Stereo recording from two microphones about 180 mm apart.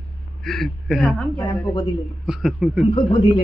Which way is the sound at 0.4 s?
Centre (ahead or behind).